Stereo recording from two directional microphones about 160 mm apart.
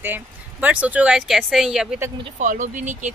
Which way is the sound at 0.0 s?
10° right (ahead or behind).